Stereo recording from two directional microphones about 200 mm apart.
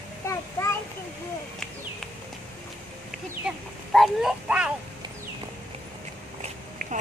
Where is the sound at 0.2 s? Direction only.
15° left (ahead or behind).